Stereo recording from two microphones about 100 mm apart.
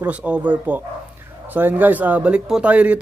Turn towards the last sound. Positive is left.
turn(degrees=-15)  # may be behind; listen again after turning